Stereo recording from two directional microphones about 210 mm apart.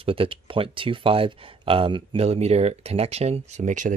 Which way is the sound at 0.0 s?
25° right (ahead or behind).